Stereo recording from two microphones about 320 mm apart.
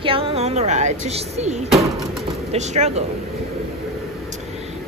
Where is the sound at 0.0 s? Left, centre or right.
Centre.